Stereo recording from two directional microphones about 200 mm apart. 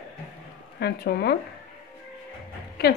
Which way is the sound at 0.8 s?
55° left (ahead or behind).